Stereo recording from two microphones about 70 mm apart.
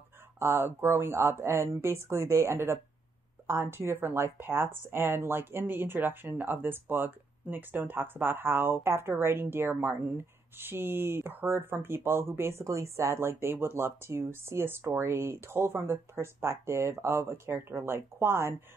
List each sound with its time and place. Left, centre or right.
0.4 s speech: right